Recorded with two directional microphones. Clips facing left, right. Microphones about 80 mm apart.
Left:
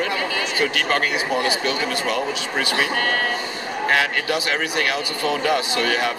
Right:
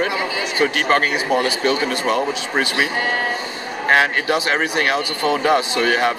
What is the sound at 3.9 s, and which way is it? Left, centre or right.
Speech, right.